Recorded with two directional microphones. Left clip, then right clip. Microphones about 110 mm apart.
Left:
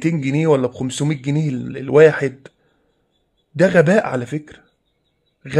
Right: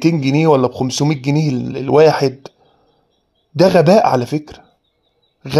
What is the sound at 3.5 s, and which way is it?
Speech, 25° right (ahead or behind).